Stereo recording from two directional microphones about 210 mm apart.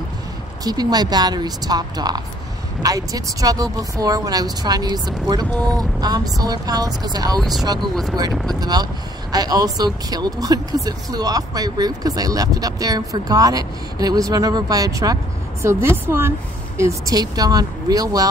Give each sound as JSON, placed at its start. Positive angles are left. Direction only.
{"t": 0.7, "sound": "a woman's voice", "side_deg": -20}
{"t": 7.9, "sound": "speech", "side_deg": 0}
{"t": 8.5, "sound": "speech", "side_deg": -20}